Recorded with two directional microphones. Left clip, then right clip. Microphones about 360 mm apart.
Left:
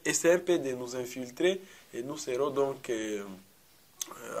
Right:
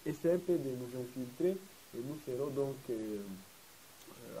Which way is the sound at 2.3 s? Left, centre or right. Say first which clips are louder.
Left 8 dB; centre.